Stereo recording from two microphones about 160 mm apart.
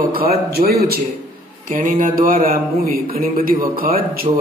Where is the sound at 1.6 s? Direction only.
60° right (ahead or behind).